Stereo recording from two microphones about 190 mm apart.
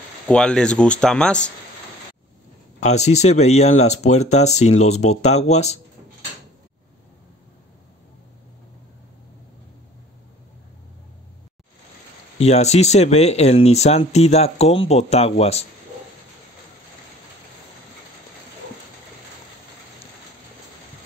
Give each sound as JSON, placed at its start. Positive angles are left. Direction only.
{"t": 0.3, "sound": "speech", "side_deg": 5}
{"t": 2.8, "sound": "speech", "side_deg": 35}
{"t": 12.4, "sound": "speech", "side_deg": 35}